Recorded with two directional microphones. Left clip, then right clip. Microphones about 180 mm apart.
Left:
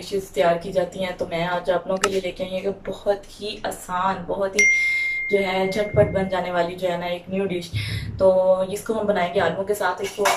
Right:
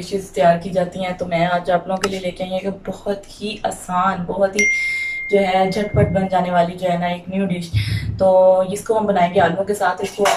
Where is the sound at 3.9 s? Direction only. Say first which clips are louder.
Right 4 dB; centre (ahead or behind).